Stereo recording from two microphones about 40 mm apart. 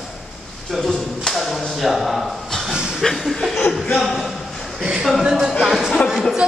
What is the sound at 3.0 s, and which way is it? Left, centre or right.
Chuckle, centre.